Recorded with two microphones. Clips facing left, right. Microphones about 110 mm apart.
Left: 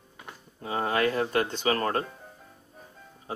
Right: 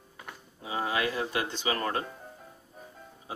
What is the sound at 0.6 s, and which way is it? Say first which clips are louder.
Speech: left 4 dB; 50° left (ahead or behind).